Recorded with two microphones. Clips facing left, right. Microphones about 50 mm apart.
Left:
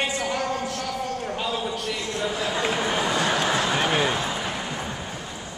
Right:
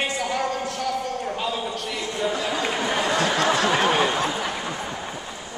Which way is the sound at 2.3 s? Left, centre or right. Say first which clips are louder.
Even; centre.